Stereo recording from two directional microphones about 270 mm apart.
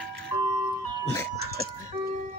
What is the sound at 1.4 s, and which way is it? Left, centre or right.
Ice cream truck, right.